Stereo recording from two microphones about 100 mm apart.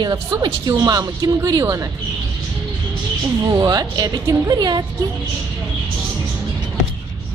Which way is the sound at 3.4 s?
40° right (ahead or behind).